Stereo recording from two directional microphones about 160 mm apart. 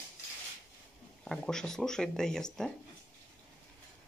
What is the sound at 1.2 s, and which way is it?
Speech, 5° left (ahead or behind).